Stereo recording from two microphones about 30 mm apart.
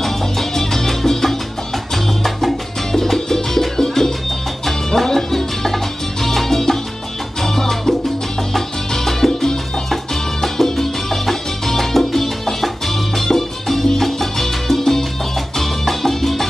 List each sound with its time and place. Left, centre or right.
0.0 s music: centre
2.9 s music: centre
6.2 s salsa music: centre
7.4 s music: centre
10.4 s music: centre